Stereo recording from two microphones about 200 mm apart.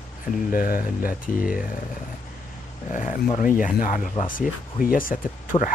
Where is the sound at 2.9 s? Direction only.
40° left (ahead or behind).